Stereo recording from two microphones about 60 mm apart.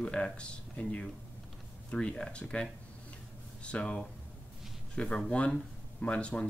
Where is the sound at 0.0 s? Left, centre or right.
Centre.